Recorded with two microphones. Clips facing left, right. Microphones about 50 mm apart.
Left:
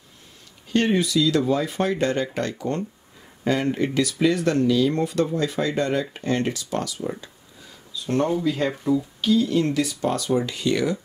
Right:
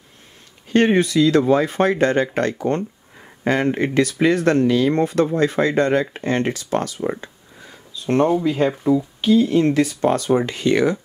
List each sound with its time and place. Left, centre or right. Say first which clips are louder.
0.7 s speech: right 5 dB; right
7.9 s a sound: right 5 dB; right
8.3 s speech: right 5 dB; right